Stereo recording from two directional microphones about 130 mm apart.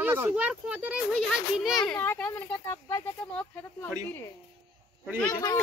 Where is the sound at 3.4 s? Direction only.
15° left (ahead or behind).